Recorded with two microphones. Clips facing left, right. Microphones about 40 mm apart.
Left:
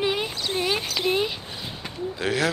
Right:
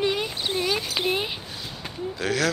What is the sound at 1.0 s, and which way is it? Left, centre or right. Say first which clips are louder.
Speech: left 2 dB; centre.